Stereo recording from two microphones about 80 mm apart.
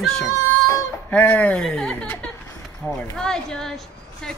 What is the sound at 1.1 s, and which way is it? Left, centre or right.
A man's voice, centre.